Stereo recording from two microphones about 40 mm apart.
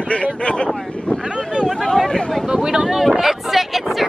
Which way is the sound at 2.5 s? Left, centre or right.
Right.